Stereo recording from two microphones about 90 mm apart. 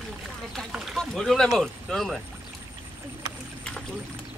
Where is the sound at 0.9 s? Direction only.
5° left (ahead or behind).